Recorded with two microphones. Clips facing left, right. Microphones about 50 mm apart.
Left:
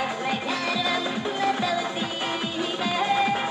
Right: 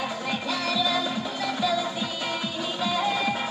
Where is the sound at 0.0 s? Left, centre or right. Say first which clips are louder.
Left 2 dB; left.